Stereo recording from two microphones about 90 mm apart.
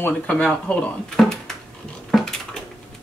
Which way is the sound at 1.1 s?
5° left (ahead or behind).